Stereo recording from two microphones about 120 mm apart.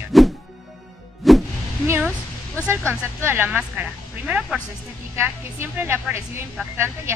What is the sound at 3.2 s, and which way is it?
Speech, 15° right (ahead or behind).